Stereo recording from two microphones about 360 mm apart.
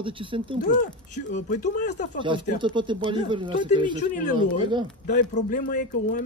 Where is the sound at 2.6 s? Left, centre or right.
Centre.